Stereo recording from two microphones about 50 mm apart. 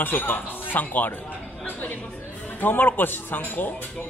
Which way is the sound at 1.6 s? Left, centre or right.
Left.